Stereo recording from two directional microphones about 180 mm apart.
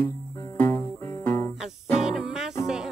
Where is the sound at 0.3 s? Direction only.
15° left (ahead or behind).